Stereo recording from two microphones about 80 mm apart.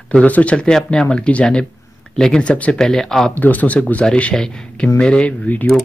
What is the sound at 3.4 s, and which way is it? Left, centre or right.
Speech, centre.